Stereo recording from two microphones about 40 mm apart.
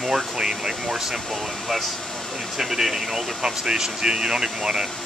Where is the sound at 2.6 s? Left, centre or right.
Centre.